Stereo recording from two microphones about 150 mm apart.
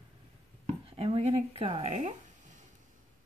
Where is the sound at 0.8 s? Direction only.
40° right (ahead or behind).